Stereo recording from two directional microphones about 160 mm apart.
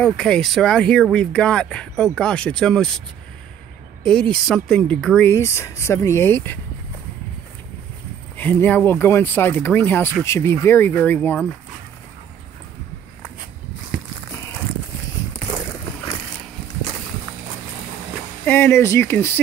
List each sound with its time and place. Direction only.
0.0 s speech: 5° left (ahead or behind)
4.0 s speech: 5° left (ahead or behind)
5.3 s speech: 15° left (ahead or behind)
8.4 s speech: 10° left (ahead or behind)
14.3 s a sound: 15° left (ahead or behind)
18.4 s speech: 15° left (ahead or behind)